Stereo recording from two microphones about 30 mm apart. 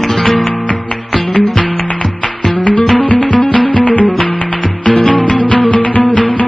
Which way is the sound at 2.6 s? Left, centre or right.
Left.